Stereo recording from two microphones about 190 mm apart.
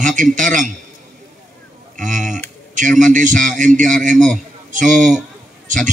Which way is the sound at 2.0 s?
40° right (ahead or behind).